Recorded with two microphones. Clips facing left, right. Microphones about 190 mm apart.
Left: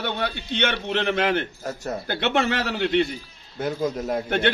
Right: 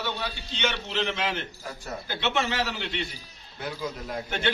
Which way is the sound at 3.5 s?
45° left (ahead or behind).